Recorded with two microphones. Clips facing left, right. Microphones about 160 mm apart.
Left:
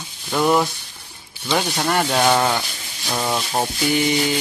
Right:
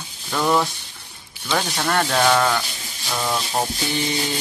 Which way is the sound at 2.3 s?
20° left (ahead or behind).